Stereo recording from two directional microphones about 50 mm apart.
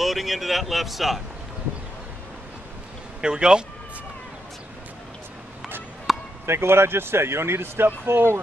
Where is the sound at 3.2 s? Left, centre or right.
Centre.